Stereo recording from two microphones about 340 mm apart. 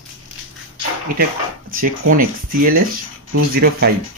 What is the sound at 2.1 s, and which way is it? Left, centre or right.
Speech, right.